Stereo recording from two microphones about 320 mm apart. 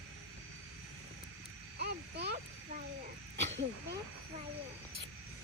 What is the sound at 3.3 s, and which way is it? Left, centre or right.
Speech, right.